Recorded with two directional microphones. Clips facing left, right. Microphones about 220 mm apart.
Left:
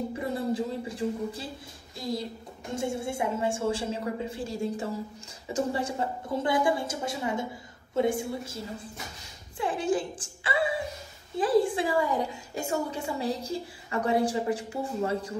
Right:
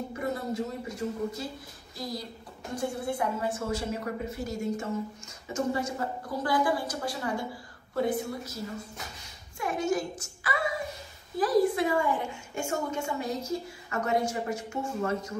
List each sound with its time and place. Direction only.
0.1 s a woman's voice: 30° left (ahead or behind)